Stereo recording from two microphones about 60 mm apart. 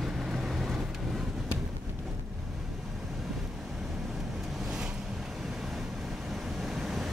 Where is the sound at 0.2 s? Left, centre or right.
Centre.